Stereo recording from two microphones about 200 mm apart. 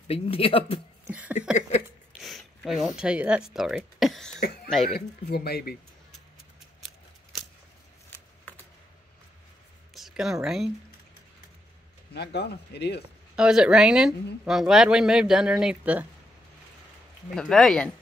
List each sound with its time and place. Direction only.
0.1 s speech: 30° left (ahead or behind)
1.0 s speech: 5° right (ahead or behind)
4.9 s speech: 50° left (ahead or behind)
6.8 s scissors: centre (ahead or behind)
8.1 s a sound: 10° left (ahead or behind)
9.9 s speech: centre (ahead or behind)
12.1 s speech: 55° left (ahead or behind)
13.4 s speech: 5° right (ahead or behind)
17.3 s speech: centre (ahead or behind)